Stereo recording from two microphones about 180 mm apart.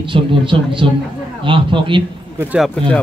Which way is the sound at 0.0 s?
30° right (ahead or behind).